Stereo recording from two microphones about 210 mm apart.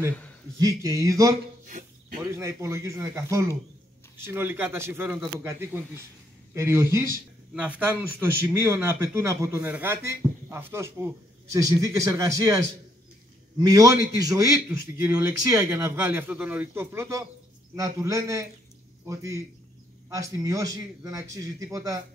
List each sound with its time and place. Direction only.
0.6 s a man's voice: 15° right (ahead or behind)
1.7 s a sound: 40° right (ahead or behind)
2.3 s a man's voice: 15° right (ahead or behind)
13.6 s a man's voice: 15° right (ahead or behind)
20.1 s a man's voice: 15° right (ahead or behind)